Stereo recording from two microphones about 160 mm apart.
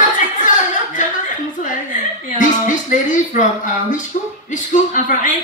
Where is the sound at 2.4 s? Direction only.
55° left (ahead or behind).